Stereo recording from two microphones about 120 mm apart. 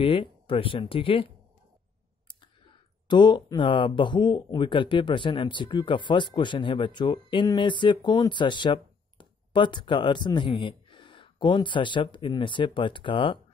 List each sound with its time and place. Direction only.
0.0 s speech: 50° left (ahead or behind)
3.1 s speech: 40° left (ahead or behind)